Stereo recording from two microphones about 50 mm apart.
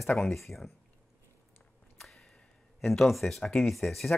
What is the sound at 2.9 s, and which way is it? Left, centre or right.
Speech, centre.